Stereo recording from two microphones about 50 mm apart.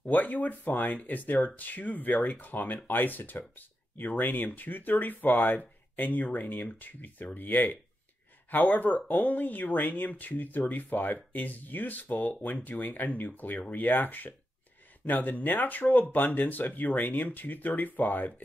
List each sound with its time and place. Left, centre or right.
0.1 s speech: left